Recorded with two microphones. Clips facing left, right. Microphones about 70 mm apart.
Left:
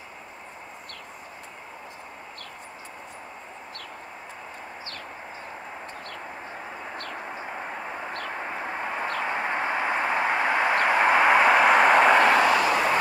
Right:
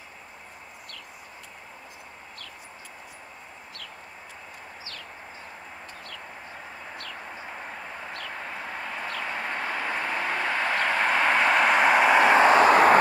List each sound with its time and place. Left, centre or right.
7.2 s vehicle: centre
9.2 s a sound: left; by 12.3 s centre
12.4 s vehicle: right